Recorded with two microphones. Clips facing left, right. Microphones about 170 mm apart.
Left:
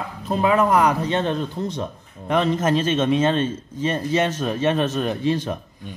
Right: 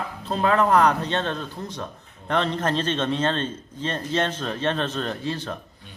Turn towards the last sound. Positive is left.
turn(degrees=15)  # may be behind; listen again after turning